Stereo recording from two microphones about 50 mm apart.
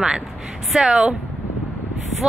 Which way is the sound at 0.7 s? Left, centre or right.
Centre.